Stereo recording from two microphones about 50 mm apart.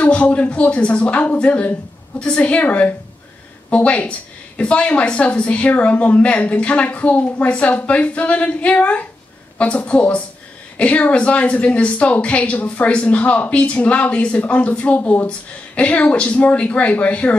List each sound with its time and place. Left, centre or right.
0.0 s speech: left